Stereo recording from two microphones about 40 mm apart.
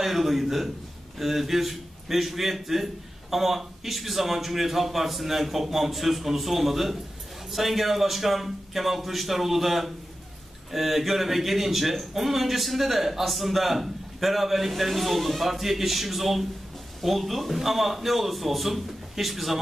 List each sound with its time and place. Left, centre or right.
0.0 s a man's voice: centre